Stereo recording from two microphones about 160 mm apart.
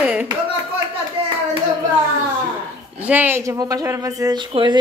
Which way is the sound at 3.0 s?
10° right (ahead or behind).